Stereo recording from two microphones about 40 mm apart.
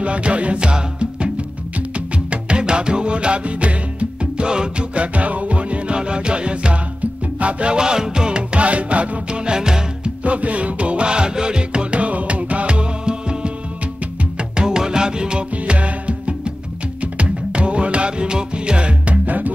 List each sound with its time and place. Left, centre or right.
0.0 s music: right
9.5 s music: centre
10.2 s music: right
14.5 s music: centre
15.5 s music: right
19.2 s music: right